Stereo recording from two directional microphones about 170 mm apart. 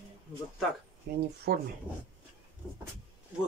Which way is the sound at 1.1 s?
65° right (ahead or behind).